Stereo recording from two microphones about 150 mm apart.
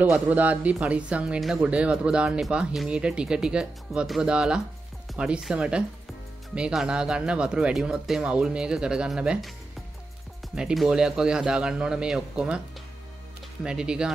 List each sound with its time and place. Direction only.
0.1 s speech: 10° right (ahead or behind)
10.5 s speech: 5° right (ahead or behind)